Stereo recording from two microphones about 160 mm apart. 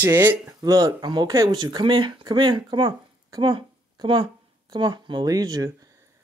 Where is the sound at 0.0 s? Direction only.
15° right (ahead or behind).